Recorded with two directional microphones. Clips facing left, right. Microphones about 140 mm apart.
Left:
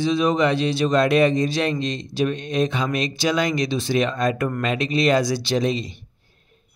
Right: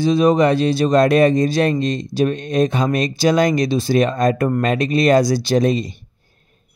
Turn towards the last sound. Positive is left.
turn(degrees=-45)  # may be behind; listen again after turning